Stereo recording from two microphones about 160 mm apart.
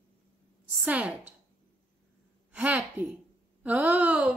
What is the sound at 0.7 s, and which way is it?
Speech, 5° right (ahead or behind).